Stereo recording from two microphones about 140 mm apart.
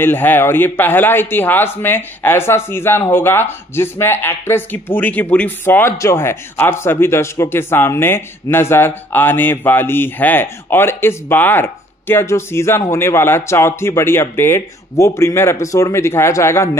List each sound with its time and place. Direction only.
0.0 s a man's voice: 15° left (ahead or behind)